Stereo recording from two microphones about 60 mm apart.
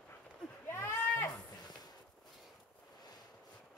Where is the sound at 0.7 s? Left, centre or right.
Left.